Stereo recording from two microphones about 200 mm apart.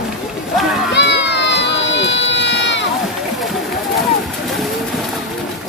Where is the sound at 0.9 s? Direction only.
60° left (ahead or behind).